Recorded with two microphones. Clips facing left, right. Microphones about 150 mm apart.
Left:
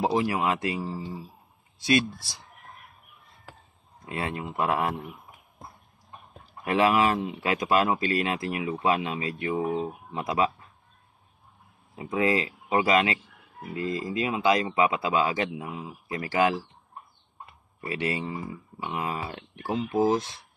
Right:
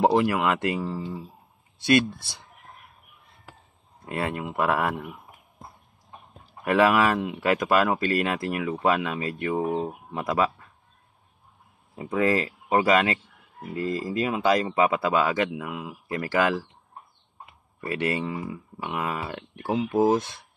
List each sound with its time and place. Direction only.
0.0 s speech: 65° right (ahead or behind)
4.0 s speech: 55° right (ahead or behind)
6.7 s speech: 55° right (ahead or behind)
11.9 s speech: 50° right (ahead or behind)
17.7 s speech: 55° right (ahead or behind)